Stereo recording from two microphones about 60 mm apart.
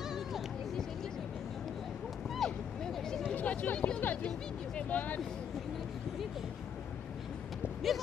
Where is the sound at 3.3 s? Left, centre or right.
Left.